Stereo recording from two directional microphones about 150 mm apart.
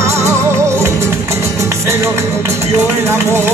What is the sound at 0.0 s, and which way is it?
Music, 20° right (ahead or behind).